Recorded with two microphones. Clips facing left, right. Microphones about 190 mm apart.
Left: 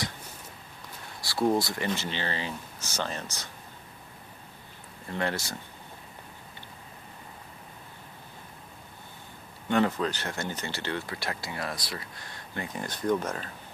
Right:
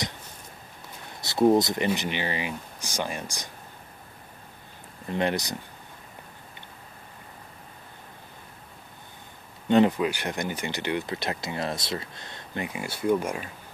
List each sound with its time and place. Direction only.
1.2 s speech: 20° right (ahead or behind)
5.0 s speech: 20° right (ahead or behind)
9.7 s speech: 20° right (ahead or behind)
12.6 s speech: 10° right (ahead or behind)